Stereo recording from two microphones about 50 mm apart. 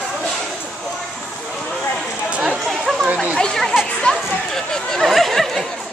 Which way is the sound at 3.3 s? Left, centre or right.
Centre.